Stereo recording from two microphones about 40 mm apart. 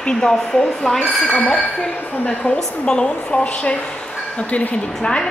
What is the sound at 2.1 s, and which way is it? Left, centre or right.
Speech, left.